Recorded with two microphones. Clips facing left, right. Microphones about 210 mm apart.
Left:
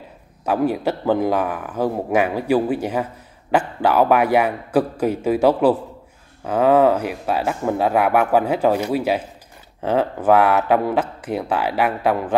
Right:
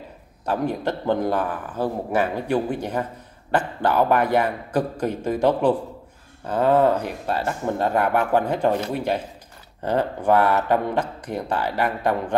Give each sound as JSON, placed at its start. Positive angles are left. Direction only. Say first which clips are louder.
{"t": 0.5, "sound": "a man's voice", "louder": "left 4 dB", "side_deg": 10}
{"t": 10.2, "sound": "speech", "louder": "left 3 dB", "side_deg": 90}
{"t": 10.9, "sound": "a man's voice", "louder": "left 4 dB", "side_deg": 5}